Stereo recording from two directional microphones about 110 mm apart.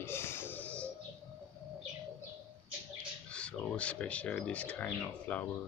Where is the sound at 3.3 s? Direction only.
10° left (ahead or behind).